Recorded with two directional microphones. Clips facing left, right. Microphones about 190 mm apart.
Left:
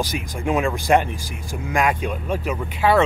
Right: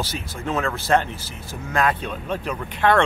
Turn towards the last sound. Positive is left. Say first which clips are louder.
# left 1 dB
turn(degrees=5)  # may be behind; listen again after turning